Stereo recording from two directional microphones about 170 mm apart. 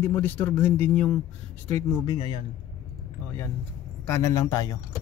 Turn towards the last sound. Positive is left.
turn(degrees=20)  # may be behind; listen again after turning